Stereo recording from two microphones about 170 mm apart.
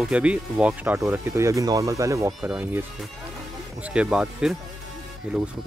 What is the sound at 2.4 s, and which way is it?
Speech, 5° right (ahead or behind).